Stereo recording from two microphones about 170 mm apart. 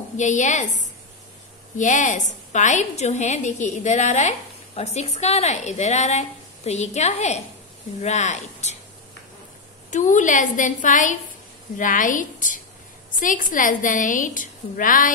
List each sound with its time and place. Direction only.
0.2 s a woman's voice: 45° left (ahead or behind)
9.8 s a woman's voice: 45° left (ahead or behind)